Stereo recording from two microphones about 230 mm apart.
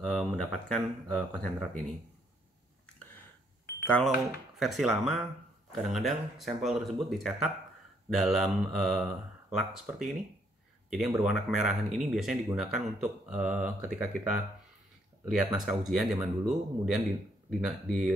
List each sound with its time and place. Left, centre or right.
0.0 s speech: centre
3.8 s speech: centre
15.2 s speech: centre